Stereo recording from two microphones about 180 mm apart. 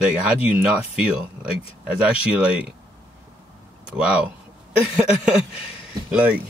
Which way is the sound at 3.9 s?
5° right (ahead or behind).